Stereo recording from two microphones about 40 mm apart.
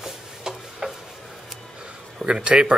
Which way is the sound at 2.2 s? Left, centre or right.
Right.